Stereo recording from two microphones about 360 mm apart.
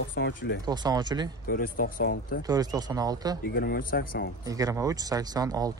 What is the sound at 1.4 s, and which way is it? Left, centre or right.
Speech, left.